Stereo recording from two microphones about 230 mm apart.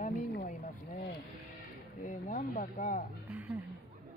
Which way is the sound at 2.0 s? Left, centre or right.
Left.